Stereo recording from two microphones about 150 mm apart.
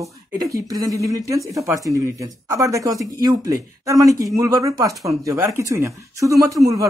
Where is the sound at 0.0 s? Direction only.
20° right (ahead or behind).